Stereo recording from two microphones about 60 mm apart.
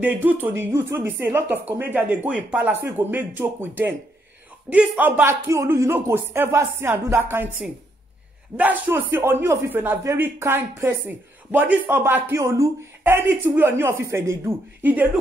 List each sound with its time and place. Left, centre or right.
0.0 s speech: right
0.7 s a man's voice: right
5.2 s speech: right
6.0 s a man's voice: right
8.5 s a man's voice: right
11.1 s speech: right
12.4 s speech: right
13.0 s a man's voice: right
14.8 s speech: right